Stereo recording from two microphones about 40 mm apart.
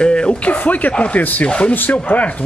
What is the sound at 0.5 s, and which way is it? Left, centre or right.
Speech, left.